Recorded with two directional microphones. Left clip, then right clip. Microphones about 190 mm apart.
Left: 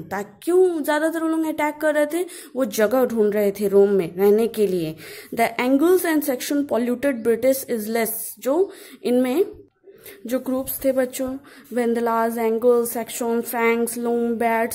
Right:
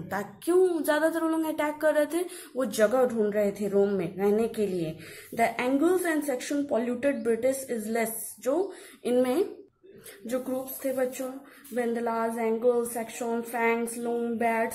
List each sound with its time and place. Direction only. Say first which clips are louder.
0.1 s a woman's voice: left 5 dB; 35° left (ahead or behind)